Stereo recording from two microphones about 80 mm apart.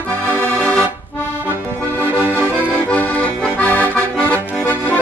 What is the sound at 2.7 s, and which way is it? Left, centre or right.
Accordion, centre.